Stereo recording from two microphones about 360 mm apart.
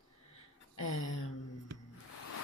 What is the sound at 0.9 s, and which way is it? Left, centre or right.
Speech, left.